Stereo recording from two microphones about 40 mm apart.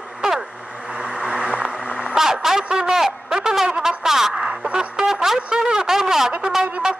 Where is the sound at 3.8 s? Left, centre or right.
Centre.